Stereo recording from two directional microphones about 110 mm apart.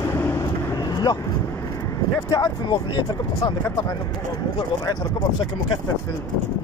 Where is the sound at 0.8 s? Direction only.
40° left (ahead or behind).